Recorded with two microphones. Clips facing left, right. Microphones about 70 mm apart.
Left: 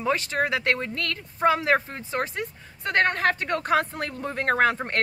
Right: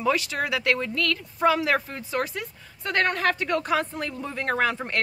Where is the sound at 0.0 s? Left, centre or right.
Left.